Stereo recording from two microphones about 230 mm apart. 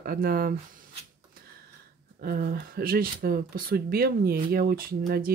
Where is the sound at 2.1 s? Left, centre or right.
Right.